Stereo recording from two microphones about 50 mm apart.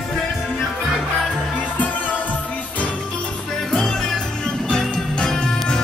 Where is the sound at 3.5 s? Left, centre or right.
Centre.